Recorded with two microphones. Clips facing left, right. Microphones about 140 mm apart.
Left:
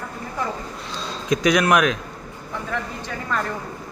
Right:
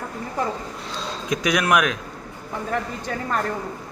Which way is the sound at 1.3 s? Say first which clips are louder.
Left 3 dB; 5° right (ahead or behind).